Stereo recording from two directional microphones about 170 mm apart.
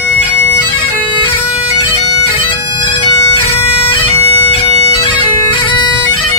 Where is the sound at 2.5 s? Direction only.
30° left (ahead or behind).